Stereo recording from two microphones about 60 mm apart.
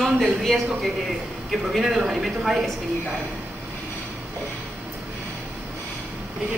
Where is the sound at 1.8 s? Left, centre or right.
Right.